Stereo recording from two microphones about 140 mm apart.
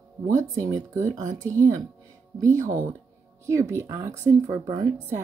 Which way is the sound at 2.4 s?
20° right (ahead or behind).